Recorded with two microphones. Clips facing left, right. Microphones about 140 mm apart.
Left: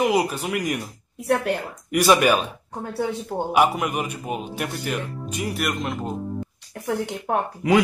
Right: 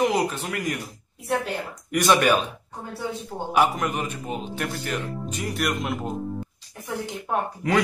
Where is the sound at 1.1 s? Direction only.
65° left (ahead or behind).